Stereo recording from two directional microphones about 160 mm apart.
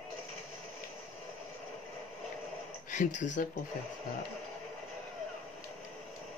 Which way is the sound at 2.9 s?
50° left (ahead or behind).